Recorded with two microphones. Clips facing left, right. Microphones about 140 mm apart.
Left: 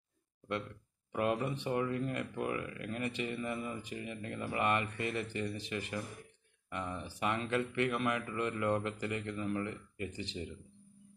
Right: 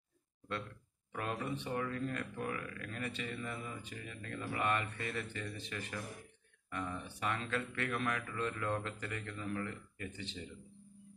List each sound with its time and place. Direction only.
1.1 s speech: 15° left (ahead or behind)